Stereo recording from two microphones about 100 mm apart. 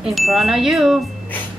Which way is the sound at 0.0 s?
Centre (ahead or behind).